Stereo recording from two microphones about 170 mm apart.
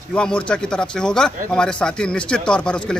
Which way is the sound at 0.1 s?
5° left (ahead or behind).